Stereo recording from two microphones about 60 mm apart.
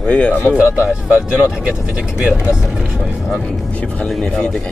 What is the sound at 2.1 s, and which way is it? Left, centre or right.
Speech, centre.